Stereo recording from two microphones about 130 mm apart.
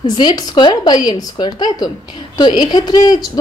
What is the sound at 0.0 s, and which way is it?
Speech, 35° left (ahead or behind).